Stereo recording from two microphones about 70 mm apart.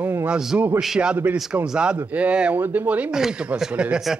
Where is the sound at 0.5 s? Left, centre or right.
Right.